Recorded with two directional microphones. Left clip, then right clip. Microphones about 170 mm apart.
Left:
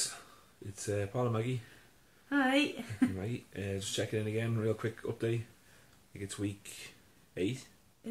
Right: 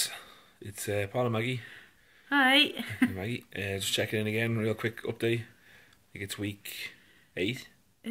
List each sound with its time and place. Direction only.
0.7 s speech: 15° right (ahead or behind)